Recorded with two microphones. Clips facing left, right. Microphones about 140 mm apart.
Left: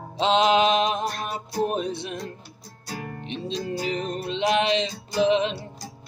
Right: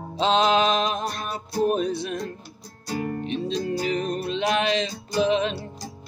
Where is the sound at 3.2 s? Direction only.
25° left (ahead or behind).